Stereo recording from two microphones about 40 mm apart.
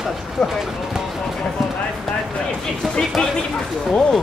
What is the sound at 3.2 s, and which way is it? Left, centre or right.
Speech, centre.